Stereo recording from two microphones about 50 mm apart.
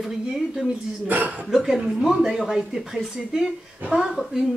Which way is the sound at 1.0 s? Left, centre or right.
Right.